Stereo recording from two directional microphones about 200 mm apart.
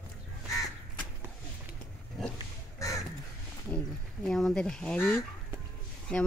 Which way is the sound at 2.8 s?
15° left (ahead or behind).